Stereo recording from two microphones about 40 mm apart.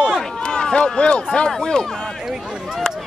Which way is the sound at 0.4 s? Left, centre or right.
Centre.